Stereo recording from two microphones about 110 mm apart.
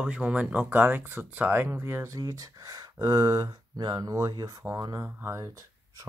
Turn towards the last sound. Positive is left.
turn(degrees=-30)  # may be behind; listen again after turning